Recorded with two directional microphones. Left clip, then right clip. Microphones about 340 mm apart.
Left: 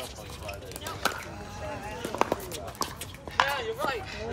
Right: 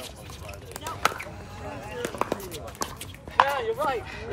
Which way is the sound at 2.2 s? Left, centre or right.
Centre.